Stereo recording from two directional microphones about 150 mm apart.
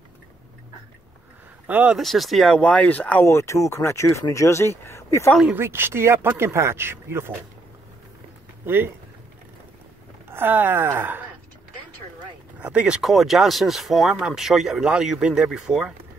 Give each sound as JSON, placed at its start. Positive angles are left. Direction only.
{"t": 1.7, "sound": "speech", "side_deg": -10}
{"t": 5.3, "sound": "speech", "side_deg": -5}
{"t": 5.6, "sound": "speech", "side_deg": -15}
{"t": 8.6, "sound": "speech", "side_deg": -15}
{"t": 10.3, "sound": "speech", "side_deg": -15}
{"t": 12.5, "sound": "speech", "side_deg": -5}